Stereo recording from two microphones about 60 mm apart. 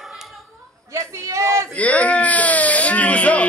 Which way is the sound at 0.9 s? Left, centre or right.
Right.